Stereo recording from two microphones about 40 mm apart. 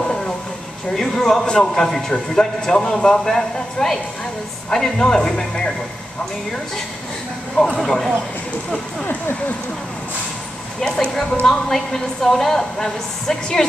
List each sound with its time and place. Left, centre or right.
0.0 s a sound: left
0.9 s a man's voice: centre
7.5 s a man's voice: centre
10.8 s a man's voice: centre